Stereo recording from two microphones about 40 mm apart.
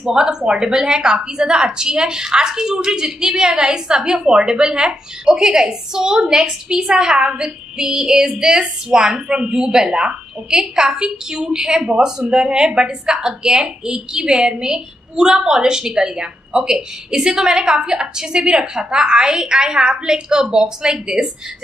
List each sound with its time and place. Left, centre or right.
0.0 s a woman's voice: centre
14.2 s a woman's voice: centre